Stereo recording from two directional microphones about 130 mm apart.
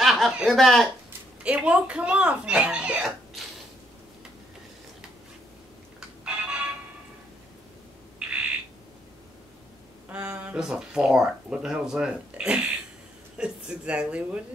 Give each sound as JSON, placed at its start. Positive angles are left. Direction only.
{"t": 0.0, "sound": "speech", "side_deg": 0}
{"t": 1.4, "sound": "speech", "side_deg": -10}
{"t": 5.9, "sound": "telephone", "side_deg": -5}
{"t": 10.0, "sound": "speech", "side_deg": -10}